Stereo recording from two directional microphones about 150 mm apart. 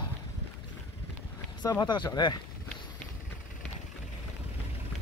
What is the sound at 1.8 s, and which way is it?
Speech, 30° left (ahead or behind).